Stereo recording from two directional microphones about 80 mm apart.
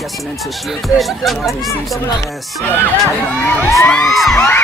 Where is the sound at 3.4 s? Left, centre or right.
Left.